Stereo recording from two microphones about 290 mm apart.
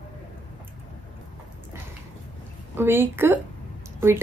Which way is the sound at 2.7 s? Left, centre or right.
Centre.